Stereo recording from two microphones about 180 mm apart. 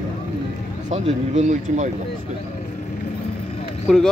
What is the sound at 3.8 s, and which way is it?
Speech, 5° left (ahead or behind).